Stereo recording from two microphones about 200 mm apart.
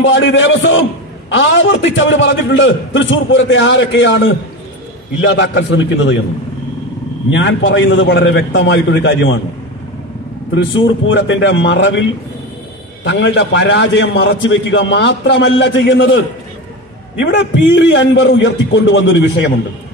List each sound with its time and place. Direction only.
0.0 s a man's voice: 70° left (ahead or behind)
7.2 s a man's voice: 65° left (ahead or behind)
11.1 s a man's voice: 65° left (ahead or behind)
17.2 s a man's voice: 60° left (ahead or behind)